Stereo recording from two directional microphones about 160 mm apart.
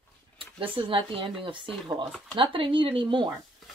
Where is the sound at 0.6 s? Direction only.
35° right (ahead or behind).